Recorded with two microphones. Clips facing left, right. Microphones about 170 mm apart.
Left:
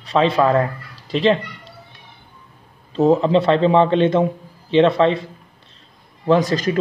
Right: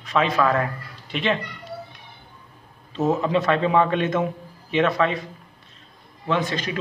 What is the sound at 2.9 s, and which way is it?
A man's voice, 30° left (ahead or behind).